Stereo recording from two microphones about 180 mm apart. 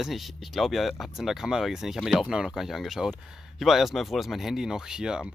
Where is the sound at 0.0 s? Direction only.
Centre (ahead or behind).